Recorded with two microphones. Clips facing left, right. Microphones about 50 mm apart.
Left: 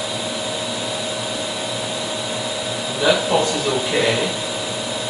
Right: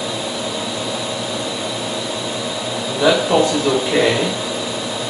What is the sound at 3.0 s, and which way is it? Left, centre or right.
Speech, centre.